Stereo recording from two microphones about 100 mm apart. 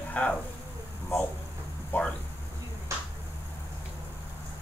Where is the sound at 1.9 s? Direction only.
20° left (ahead or behind).